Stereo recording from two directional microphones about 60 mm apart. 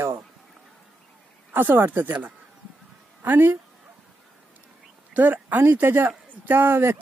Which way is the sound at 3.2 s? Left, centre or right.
Right.